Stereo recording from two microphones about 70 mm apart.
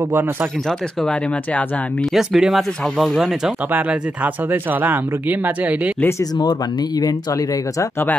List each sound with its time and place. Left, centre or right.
0.1 s speech: right
0.7 s speech: centre
2.1 s speech: centre
2.8 s speech: centre
3.2 s speech: centre
3.7 s speech: right
6.3 s speech: left